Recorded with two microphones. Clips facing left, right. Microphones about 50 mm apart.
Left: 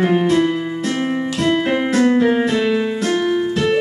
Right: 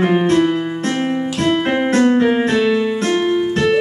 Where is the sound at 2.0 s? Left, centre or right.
Right.